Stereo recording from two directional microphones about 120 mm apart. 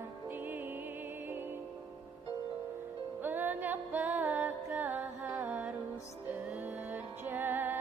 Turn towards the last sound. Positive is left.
turn(degrees=-15)  # may be behind; listen again after turning